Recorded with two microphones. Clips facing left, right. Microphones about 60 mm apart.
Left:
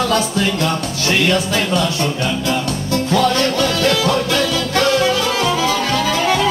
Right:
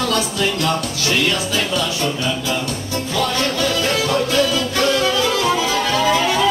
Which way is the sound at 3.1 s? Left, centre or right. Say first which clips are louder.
Left 4 dB; left.